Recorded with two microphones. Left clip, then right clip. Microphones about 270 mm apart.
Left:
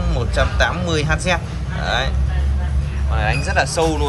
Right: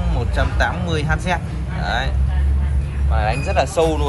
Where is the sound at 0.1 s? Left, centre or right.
Centre.